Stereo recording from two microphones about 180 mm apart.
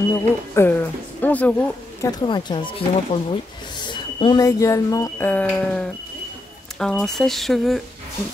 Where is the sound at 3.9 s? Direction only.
25° left (ahead or behind); by 7.8 s centre (ahead or behind).